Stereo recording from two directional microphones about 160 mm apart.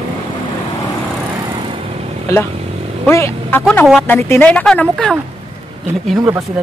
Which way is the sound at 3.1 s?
15° left (ahead or behind).